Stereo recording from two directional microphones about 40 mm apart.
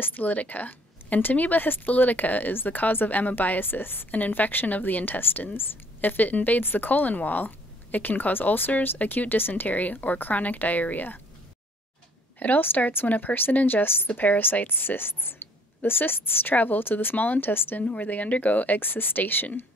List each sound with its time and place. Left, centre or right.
0.0 s speech: left
1.6 s a woman's voice: left
4.1 s a woman's voice: left
5.9 s a woman's voice: left
6.6 s a woman's voice: left
12.4 s speech: left
17.7 s a woman's voice: left
18.8 s speech: left